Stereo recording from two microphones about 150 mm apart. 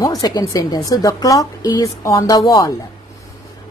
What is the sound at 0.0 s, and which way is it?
A woman's voice, 25° left (ahead or behind).